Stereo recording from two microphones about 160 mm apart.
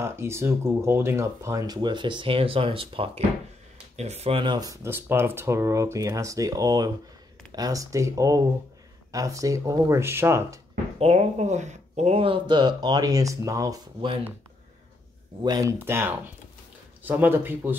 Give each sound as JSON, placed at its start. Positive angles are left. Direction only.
{"t": 0.0, "sound": "speech", "side_deg": -15}
{"t": 11.0, "sound": "speech", "side_deg": -40}
{"t": 15.4, "sound": "speech", "side_deg": -25}
{"t": 15.8, "sound": "speech", "side_deg": -15}